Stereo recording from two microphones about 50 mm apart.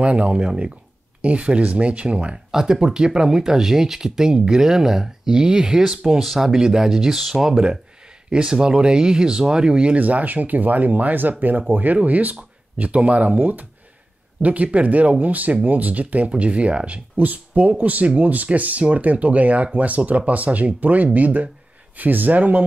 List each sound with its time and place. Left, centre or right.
0.0 s speech: right; by 7.3 s centre
7.4 s speech: centre; by 22.7 s right